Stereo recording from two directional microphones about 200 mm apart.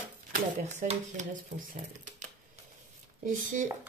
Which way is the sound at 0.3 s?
40° right (ahead or behind).